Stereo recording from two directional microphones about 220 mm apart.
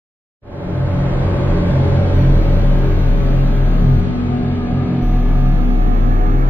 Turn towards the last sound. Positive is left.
turn(degrees=-10)  # may be behind; listen again after turning